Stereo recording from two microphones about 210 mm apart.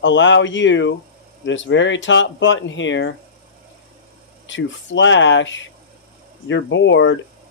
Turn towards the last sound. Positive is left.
turn(degrees=60)  # may be behind; listen again after turning